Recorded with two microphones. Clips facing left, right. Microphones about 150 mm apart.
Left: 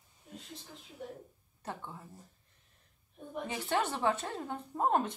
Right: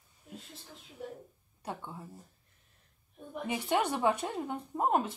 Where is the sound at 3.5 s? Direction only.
15° right (ahead or behind).